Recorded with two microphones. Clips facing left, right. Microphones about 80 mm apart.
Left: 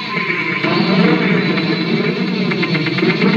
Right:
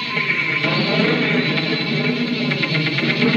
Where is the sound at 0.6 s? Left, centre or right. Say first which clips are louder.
Left 6 dB; left.